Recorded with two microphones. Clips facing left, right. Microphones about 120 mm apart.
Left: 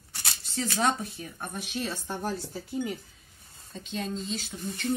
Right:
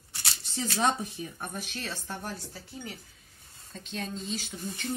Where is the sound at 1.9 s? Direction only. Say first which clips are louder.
Left 3 dB; 20° left (ahead or behind).